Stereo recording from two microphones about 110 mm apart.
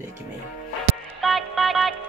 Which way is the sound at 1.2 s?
Centre (ahead or behind).